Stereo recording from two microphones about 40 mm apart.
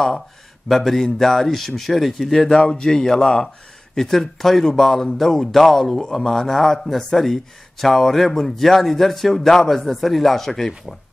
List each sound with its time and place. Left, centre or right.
0.7 s speech: centre
2.3 s speech: centre